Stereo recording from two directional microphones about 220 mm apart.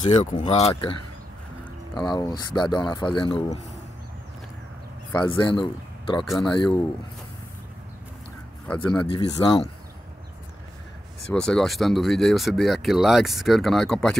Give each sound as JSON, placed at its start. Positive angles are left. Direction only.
{"t": 0.0, "sound": "speech", "side_deg": 30}
{"t": 2.0, "sound": "speech", "side_deg": 20}
{"t": 5.1, "sound": "speech", "side_deg": 20}
{"t": 8.6, "sound": "speech", "side_deg": 5}
{"t": 9.1, "sound": "speech", "side_deg": 20}
{"t": 11.3, "sound": "speech", "side_deg": 5}